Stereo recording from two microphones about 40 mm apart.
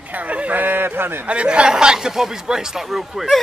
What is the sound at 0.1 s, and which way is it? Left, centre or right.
Speech, right.